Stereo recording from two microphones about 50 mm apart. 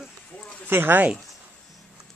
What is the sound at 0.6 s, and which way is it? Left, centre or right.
Speech, right.